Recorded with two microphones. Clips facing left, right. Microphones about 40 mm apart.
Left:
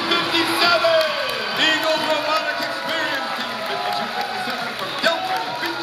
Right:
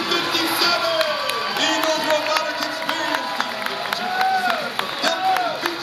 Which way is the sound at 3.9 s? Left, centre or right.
Right.